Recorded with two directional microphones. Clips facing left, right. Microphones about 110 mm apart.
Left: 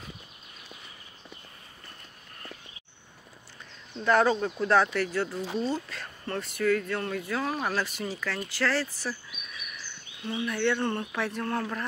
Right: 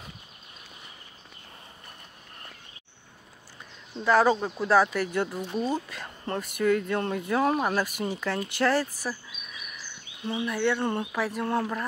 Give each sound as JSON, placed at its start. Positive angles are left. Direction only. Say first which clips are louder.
{"t": 3.9, "sound": "speech", "louder": "right 2 dB", "side_deg": -5}
{"t": 10.2, "sound": "speech", "louder": "right 1 dB", "side_deg": -15}
{"t": 11.4, "sound": "speech", "louder": "right 3 dB", "side_deg": -15}